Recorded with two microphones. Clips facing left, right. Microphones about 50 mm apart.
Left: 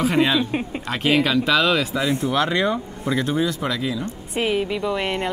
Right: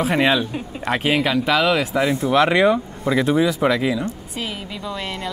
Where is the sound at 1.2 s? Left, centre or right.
Centre.